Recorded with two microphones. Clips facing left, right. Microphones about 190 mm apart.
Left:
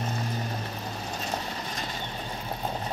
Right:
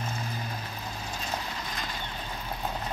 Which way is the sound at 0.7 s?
40° left (ahead or behind).